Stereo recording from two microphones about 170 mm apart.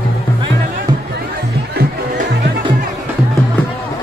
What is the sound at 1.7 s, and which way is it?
Music, 70° right (ahead or behind).